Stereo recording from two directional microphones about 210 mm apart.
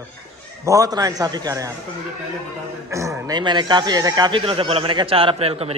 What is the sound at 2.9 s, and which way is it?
Speech, 15° right (ahead or behind).